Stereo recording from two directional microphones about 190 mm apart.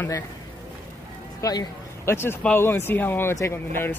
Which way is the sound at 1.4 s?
20° left (ahead or behind).